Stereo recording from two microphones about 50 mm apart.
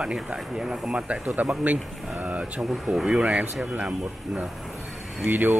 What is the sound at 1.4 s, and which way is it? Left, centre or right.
Speech, right.